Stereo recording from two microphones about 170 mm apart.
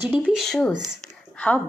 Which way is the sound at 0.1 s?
5° right (ahead or behind).